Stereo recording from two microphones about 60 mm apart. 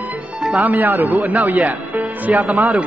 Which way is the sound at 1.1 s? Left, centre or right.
Centre.